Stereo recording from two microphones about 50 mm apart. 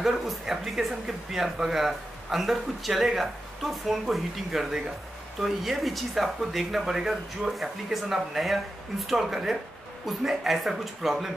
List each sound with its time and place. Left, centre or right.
0.0 s a man's voice: centre